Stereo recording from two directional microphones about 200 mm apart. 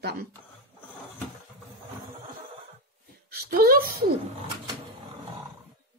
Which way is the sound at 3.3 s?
50° right (ahead or behind).